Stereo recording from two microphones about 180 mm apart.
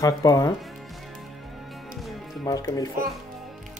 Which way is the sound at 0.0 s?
20° left (ahead or behind).